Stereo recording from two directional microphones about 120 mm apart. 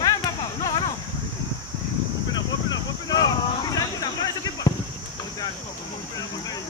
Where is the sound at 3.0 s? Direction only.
35° left (ahead or behind).